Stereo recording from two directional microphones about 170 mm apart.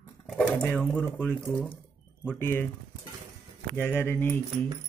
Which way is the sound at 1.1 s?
10° left (ahead or behind).